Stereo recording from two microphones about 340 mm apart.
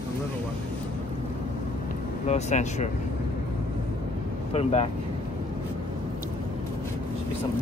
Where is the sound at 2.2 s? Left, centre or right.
Centre.